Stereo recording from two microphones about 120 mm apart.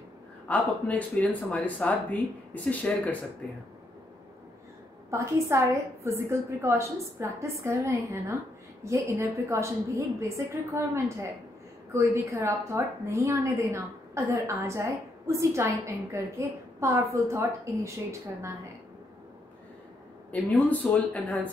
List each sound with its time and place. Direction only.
0.5 s speech: 10° left (ahead or behind)
5.1 s a woman's voice: 25° right (ahead or behind)
20.2 s speech: 15° left (ahead or behind)